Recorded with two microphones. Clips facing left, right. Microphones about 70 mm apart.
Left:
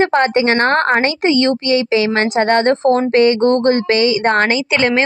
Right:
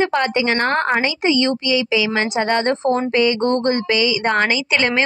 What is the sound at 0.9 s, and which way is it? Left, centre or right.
A woman's voice, left.